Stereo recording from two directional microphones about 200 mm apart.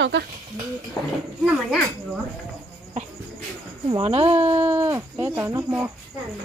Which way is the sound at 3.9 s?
30° right (ahead or behind).